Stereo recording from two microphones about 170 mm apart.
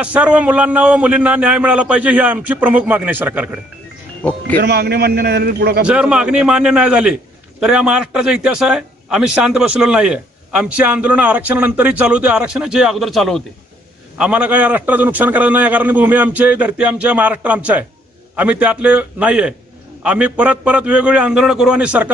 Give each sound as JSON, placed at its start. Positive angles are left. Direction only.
{"t": 0.0, "sound": "a man's voice", "side_deg": -5}
{"t": 4.2, "sound": "speech", "side_deg": 5}
{"t": 4.6, "sound": "a man's voice", "side_deg": -70}
{"t": 5.9, "sound": "a man's voice", "side_deg": -5}